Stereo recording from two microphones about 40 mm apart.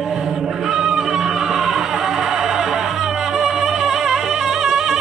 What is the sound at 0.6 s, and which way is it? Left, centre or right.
Cat, centre.